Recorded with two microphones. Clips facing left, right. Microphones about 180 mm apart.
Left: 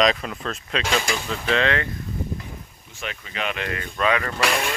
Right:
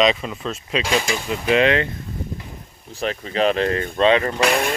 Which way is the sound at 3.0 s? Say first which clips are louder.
Right 10 dB; 35° right (ahead or behind).